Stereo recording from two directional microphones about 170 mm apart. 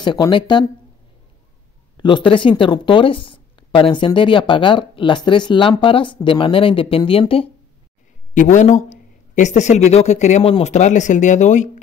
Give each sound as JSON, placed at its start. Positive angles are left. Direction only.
{"t": 0.0, "sound": "speech", "side_deg": 25}
{"t": 2.0, "sound": "speech", "side_deg": 30}
{"t": 8.4, "sound": "speech", "side_deg": 45}